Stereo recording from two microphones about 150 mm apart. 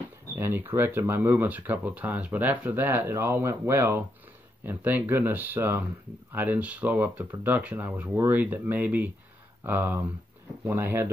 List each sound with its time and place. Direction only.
0.4 s speech: 15° right (ahead or behind)